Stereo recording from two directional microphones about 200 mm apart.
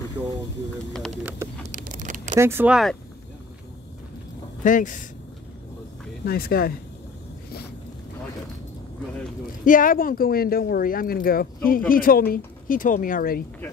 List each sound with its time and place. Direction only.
0.2 s a sound: 10° right (ahead or behind)
1.7 s vehicle: 40° right (ahead or behind)
2.3 s speech: 10° right (ahead or behind)
4.6 s speech: 40° left (ahead or behind)
6.2 s speech: 50° left (ahead or behind)
9.7 s speech: 45° left (ahead or behind)